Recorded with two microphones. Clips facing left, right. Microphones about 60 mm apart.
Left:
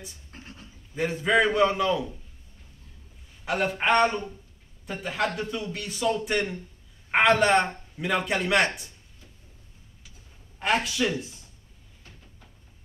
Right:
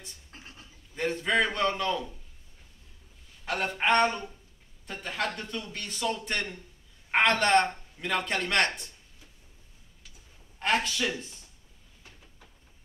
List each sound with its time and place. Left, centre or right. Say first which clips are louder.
0.3 s scratch: left 3 dB; left
0.9 s a man's voice: left 4 dB; centre
3.4 s a man's voice: left 3 dB; centre
10.6 s a man's voice: left 2 dB; centre